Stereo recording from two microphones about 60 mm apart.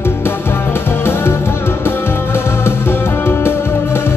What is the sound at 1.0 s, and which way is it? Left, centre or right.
Music, left.